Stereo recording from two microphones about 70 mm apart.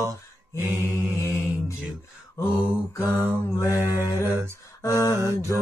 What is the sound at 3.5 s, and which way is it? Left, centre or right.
Mantra, right.